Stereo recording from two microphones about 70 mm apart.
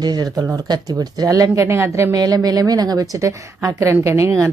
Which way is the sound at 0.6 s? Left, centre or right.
Right.